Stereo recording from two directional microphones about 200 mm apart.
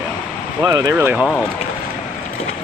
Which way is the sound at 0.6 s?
20° right (ahead or behind).